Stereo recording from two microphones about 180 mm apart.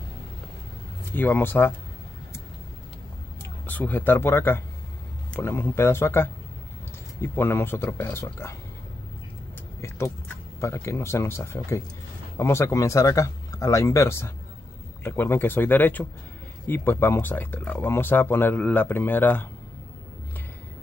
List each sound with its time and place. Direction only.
1.1 s speech: 10° left (ahead or behind)
3.6 s speech: 10° left (ahead or behind)
9.8 s speech: 15° left (ahead or behind)